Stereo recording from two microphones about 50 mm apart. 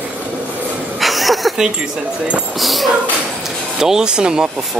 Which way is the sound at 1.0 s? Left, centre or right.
Centre.